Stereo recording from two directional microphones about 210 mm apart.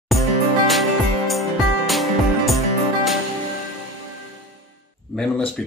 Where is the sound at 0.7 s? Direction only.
Centre (ahead or behind).